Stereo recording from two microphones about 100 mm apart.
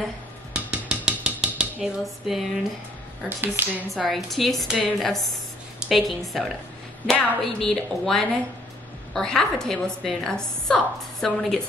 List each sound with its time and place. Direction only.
0.5 s cutlery: 10° right (ahead or behind)
3.3 s speech: 20° right (ahead or behind)
3.9 s a woman's voice: centre (ahead or behind)